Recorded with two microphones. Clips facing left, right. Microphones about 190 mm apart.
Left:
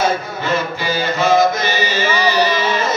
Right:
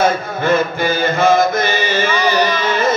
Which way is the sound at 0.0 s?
55° right (ahead or behind).